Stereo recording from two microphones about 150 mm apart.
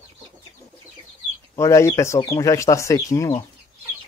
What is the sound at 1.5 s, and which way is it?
Speech, 20° left (ahead or behind).